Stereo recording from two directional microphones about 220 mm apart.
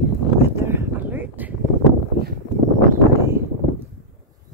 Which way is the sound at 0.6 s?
10° right (ahead or behind).